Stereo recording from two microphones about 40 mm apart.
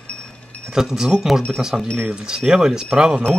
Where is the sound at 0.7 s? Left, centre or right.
Centre.